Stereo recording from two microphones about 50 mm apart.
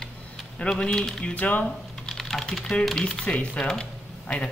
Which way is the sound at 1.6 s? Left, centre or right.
Centre.